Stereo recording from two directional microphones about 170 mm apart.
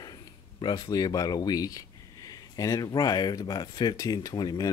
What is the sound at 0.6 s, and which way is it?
Speech, 25° left (ahead or behind).